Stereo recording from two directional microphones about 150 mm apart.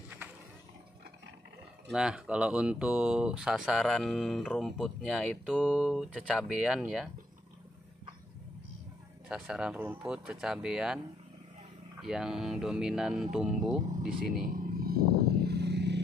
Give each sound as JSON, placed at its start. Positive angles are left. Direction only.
{"t": 1.9, "sound": "speech", "side_deg": -5}
{"t": 9.3, "sound": "speech", "side_deg": -5}
{"t": 12.0, "sound": "speech", "side_deg": -5}
{"t": 14.0, "sound": "vehicle", "side_deg": -70}